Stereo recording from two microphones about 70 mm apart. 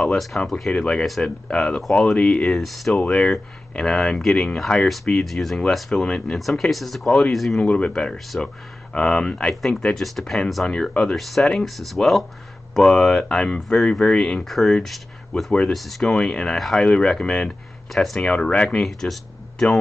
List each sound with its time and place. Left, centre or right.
0.0 s speech: centre
0.7 s speech: centre
1.0 s speech: centre
1.5 s speech: centre
2.6 s speech: centre
2.9 s speech: centre
4.8 s speech: centre
7.6 s speech: centre
14.4 s speech: centre
18.2 s speech: centre
18.8 s speech: centre